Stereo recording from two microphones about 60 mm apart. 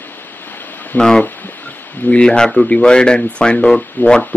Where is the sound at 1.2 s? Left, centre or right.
Left.